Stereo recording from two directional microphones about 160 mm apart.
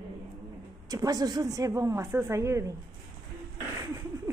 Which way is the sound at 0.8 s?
20° right (ahead or behind).